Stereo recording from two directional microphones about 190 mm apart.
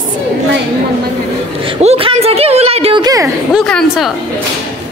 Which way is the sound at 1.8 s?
35° right (ahead or behind).